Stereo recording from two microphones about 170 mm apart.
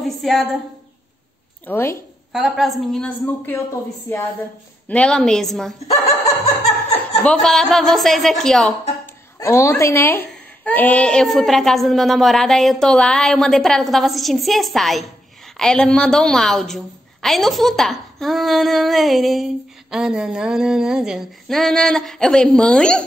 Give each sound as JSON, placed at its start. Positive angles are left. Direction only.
{"t": 0.2, "sound": "a woman's voice", "side_deg": 0}
{"t": 1.7, "sound": "speech", "side_deg": 15}
{"t": 2.3, "sound": "a woman's voice", "side_deg": 0}
{"t": 4.8, "sound": "a woman's voice", "side_deg": 5}
{"t": 6.4, "sound": "laughter", "side_deg": 40}
{"t": 7.2, "sound": "a woman's voice", "side_deg": 5}
{"t": 9.0, "sound": "a woman's voice", "side_deg": 15}